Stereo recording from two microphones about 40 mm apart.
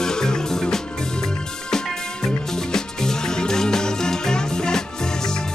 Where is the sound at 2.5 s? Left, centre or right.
Centre.